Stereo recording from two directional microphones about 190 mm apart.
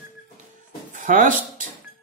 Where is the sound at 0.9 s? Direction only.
40° right (ahead or behind).